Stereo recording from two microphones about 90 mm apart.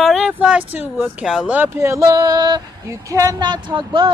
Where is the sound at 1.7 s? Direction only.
35° right (ahead or behind); by 2.6 s 50° right (ahead or behind).